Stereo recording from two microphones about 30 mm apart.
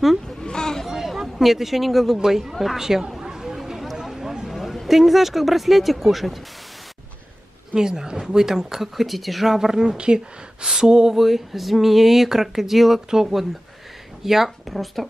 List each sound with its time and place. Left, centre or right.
0.4 s a sound: left
0.8 s a sound: centre
2.1 s speech: centre
2.5 s speech: centre
2.8 s speech: centre
3.2 s chatter: centre
3.9 s a sound: centre
4.8 s speech: centre
7.7 s speech: right; by 9.5 s centre
9.5 s speech: centre
9.9 s speech: right
10.8 s a sound: right
11.1 s speech: centre
14.2 s speech: centre